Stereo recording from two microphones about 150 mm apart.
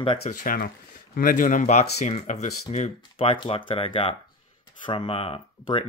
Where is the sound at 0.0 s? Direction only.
35° left (ahead or behind).